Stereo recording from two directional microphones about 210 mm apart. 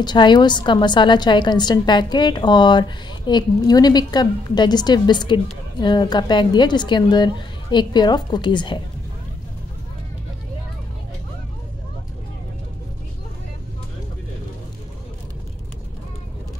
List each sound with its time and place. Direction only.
0.0 s a woman's voice: 20° left (ahead or behind)